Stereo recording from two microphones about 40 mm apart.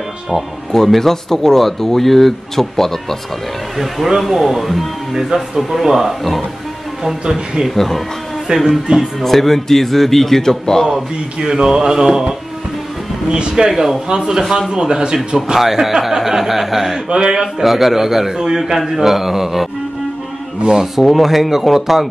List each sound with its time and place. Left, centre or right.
0.7 s speech: centre
3.7 s a man's voice: centre
7.7 s speech: centre
11.4 s a man's voice: centre
13.3 s speech: right
13.7 s a man's voice: centre
14.0 s speech: centre
15.5 s a man's voice: centre
17.1 s speech: right
17.4 s speech: centre